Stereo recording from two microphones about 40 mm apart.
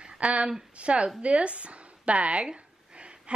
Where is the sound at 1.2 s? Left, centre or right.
Right.